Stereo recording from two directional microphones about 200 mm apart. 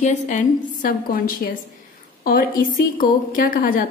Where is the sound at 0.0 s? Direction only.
40° left (ahead or behind).